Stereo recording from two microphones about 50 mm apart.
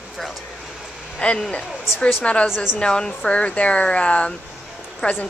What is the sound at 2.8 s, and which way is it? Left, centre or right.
Speech, centre.